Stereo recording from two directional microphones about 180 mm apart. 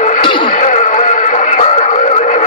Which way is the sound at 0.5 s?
45° left (ahead or behind).